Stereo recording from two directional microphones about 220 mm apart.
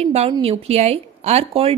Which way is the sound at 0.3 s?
25° right (ahead or behind).